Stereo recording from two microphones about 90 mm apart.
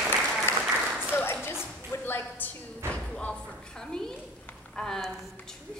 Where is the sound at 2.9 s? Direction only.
10° left (ahead or behind).